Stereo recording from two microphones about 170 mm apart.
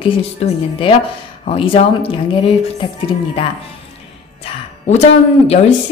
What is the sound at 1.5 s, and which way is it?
Speech, 35° left (ahead or behind).